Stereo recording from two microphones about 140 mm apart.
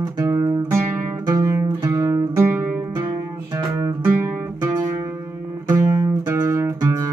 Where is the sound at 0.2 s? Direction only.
25° right (ahead or behind).